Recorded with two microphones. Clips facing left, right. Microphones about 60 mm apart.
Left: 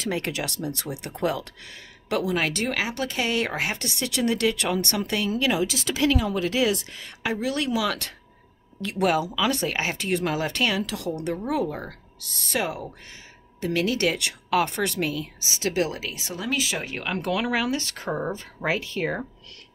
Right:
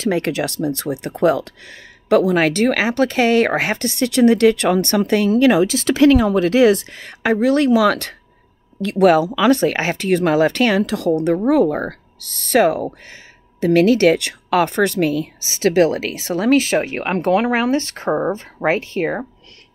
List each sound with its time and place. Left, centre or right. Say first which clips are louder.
0.0 s speech: right 9 dB; right
8.8 s speech: right 10 dB; right